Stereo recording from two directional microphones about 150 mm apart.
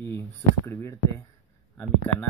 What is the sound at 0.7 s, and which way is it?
Speech, 15° left (ahead or behind).